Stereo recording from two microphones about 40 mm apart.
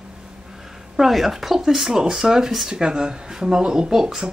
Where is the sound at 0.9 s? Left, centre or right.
Centre.